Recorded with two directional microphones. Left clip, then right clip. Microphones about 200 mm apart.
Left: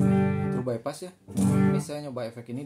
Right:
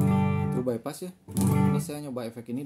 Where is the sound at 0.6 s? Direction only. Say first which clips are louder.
Even; 40° right (ahead or behind).